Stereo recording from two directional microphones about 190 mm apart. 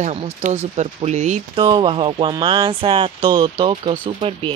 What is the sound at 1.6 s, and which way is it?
Speech, 25° right (ahead or behind).